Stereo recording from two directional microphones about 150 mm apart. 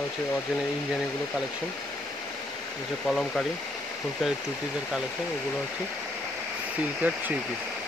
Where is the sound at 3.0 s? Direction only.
5° left (ahead or behind).